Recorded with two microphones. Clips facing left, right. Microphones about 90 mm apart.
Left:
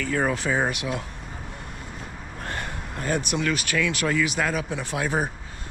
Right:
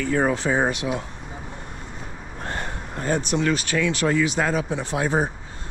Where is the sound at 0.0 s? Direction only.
30° right (ahead or behind).